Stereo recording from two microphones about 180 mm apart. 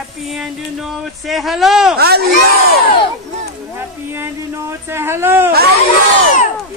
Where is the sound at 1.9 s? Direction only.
60° right (ahead or behind).